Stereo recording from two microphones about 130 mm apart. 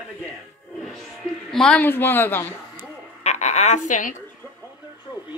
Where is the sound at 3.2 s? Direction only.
60° left (ahead or behind); by 4.1 s 75° left (ahead or behind).